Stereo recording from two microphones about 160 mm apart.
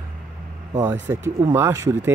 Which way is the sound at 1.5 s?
15° right (ahead or behind).